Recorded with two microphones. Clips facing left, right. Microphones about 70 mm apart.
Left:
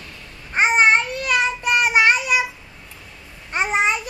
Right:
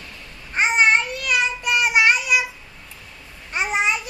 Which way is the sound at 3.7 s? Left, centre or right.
Left.